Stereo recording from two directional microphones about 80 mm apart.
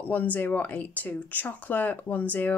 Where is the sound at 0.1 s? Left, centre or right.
Left.